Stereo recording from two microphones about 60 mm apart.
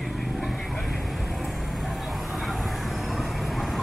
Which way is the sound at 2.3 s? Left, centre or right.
Centre.